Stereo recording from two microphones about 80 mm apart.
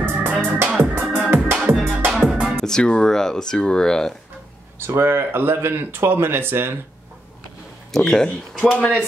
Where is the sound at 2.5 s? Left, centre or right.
Centre.